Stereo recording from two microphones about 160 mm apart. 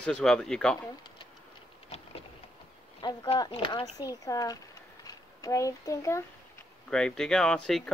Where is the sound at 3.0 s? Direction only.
25° left (ahead or behind).